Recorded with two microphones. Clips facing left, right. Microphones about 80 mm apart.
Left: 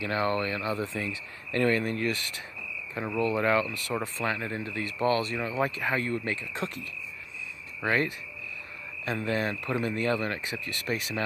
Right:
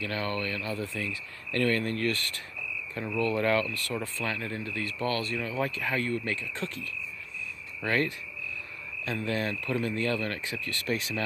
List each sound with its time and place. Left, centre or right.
0.0 s speech: centre
7.8 s speech: centre